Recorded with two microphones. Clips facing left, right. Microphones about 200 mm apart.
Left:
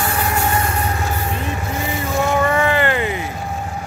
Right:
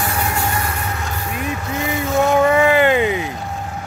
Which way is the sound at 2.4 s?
10° right (ahead or behind).